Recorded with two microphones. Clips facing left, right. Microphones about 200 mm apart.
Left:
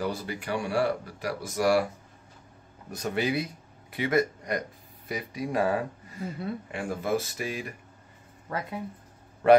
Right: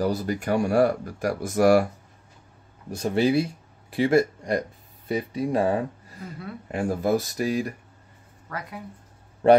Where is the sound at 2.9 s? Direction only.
30° right (ahead or behind).